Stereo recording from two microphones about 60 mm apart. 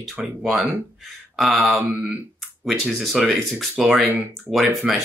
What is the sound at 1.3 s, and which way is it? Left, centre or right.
Speech, centre.